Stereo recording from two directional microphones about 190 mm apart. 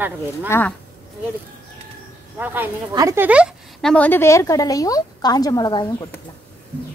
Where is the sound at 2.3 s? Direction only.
10° right (ahead or behind).